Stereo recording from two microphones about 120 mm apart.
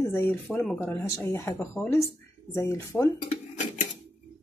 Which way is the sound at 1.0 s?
25° left (ahead or behind).